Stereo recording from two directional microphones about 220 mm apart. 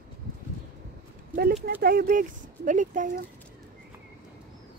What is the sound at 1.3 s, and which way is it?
Clip-clop, 45° right (ahead or behind).